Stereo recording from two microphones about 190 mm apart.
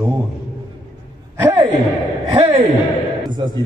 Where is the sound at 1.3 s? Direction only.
10° right (ahead or behind).